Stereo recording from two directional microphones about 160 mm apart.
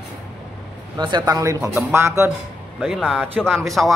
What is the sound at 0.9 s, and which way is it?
A man's voice, 25° right (ahead or behind).